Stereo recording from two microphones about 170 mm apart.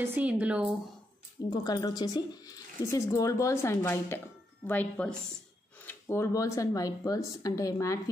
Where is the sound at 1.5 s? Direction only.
25° left (ahead or behind).